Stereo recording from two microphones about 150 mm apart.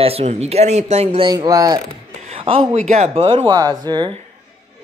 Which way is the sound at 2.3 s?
40° right (ahead or behind).